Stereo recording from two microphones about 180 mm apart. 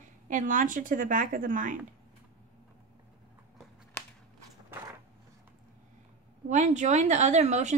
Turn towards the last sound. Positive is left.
turn(degrees=-40)  # may be behind; listen again after turning